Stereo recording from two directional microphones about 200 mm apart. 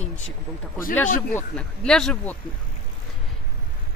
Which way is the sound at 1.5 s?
5° left (ahead or behind).